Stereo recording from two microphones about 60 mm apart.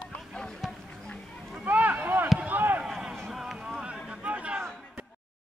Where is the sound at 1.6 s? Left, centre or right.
Right.